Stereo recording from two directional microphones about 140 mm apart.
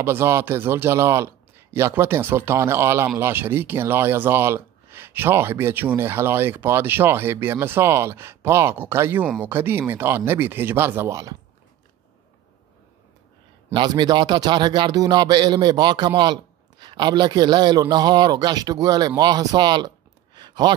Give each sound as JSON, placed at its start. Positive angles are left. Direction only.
{"t": 0.0, "sound": "speech", "side_deg": -15}
{"t": 13.7, "sound": "a man's voice", "side_deg": -30}
{"t": 20.3, "sound": "a sound", "side_deg": -30}